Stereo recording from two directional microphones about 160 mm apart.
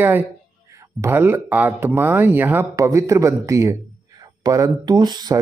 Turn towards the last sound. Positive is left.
turn(degrees=-25)  # may be behind; listen again after turning